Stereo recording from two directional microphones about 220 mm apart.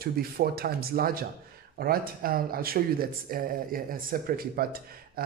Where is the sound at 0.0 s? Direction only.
45° right (ahead or behind).